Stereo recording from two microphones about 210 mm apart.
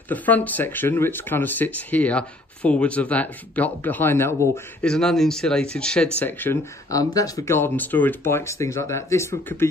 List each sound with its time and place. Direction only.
0.1 s speech: 10° left (ahead or behind)